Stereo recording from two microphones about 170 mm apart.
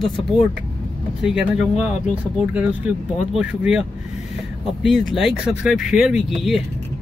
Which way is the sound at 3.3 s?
5° right (ahead or behind).